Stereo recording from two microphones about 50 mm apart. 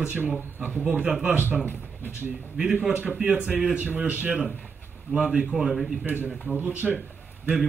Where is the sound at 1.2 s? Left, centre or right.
Right.